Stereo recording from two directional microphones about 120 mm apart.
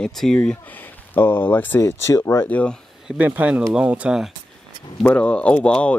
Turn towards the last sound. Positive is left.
turn(degrees=10)  # may be behind; listen again after turning